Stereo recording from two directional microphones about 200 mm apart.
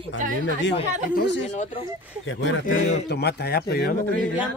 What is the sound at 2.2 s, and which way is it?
Speech, 70° left (ahead or behind).